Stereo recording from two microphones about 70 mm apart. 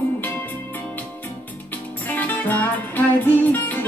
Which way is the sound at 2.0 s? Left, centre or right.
Left.